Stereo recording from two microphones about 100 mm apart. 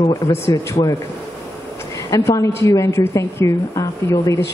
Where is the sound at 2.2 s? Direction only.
30° left (ahead or behind).